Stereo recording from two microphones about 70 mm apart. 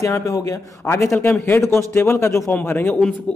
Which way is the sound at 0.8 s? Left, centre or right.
Left.